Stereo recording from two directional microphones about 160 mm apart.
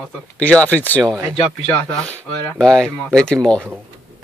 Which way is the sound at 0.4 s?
10° left (ahead or behind).